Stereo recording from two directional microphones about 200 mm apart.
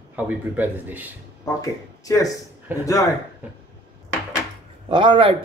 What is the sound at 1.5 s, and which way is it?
Speech, 15° left (ahead or behind).